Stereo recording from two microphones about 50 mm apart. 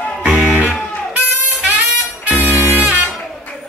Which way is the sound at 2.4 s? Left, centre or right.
Right.